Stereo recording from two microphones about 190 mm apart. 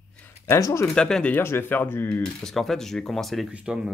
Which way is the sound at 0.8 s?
5° left (ahead or behind).